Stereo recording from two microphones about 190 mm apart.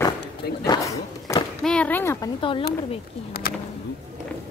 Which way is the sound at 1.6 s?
5° left (ahead or behind).